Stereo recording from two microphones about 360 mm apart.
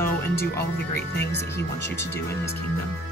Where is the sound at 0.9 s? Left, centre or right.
Left.